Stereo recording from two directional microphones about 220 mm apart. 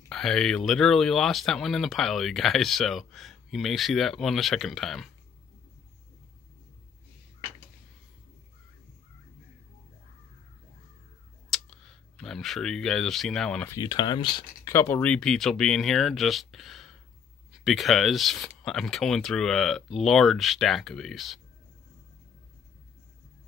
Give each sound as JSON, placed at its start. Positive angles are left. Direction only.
{"t": 0.1, "sound": "speech", "side_deg": 0}
{"t": 11.5, "sound": "speech", "side_deg": 0}